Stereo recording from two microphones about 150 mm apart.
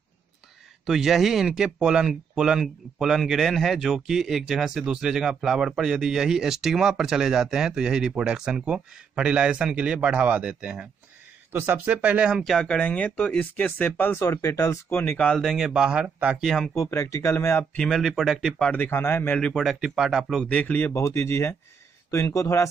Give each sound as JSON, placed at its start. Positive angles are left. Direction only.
{"t": 0.8, "sound": "speech", "side_deg": 0}
{"t": 16.9, "sound": "speech", "side_deg": 20}
{"t": 17.7, "sound": "speech", "side_deg": 0}